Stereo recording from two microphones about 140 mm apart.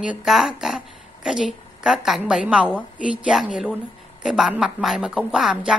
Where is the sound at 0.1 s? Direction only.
5° right (ahead or behind).